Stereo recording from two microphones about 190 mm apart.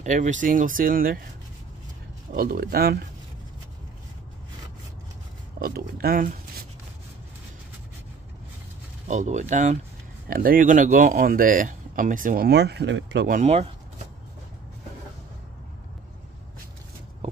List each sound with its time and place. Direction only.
0.0 s speech: 40° right (ahead or behind)
2.3 s speech: 50° right (ahead or behind)
5.6 s speech: 55° right (ahead or behind)
9.0 s speech: 40° right (ahead or behind)
10.2 s speech: 50° right (ahead or behind); by 13.3 s 70° right (ahead or behind)
13.3 s speech: 35° right (ahead or behind)